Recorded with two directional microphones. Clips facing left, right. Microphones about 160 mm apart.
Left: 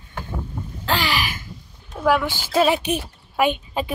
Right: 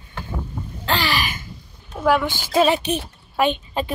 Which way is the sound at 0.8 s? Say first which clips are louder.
Even; 10° left (ahead or behind).